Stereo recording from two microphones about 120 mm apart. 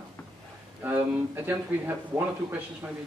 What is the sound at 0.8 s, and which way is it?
Speech, 15° right (ahead or behind).